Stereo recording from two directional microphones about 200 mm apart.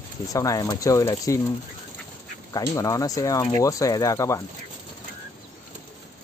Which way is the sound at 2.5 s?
15° left (ahead or behind).